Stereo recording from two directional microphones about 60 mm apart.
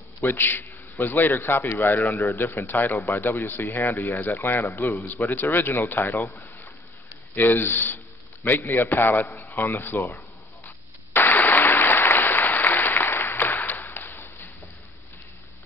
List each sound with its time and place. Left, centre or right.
0.2 s a man's voice: left
2.0 s a man's voice: left
2.5 s speech: left
9.5 s a sound: left
11.1 s applause: left